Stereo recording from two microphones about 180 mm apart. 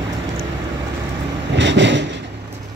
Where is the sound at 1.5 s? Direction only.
85° right.